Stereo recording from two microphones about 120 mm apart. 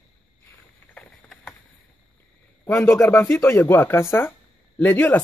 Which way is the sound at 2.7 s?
20° left (ahead or behind).